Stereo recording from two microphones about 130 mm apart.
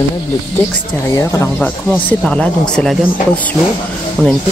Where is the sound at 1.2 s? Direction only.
20° left (ahead or behind).